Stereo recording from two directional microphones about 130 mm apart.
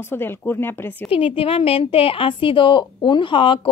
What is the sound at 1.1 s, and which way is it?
A woman's voice, 45° left (ahead or behind).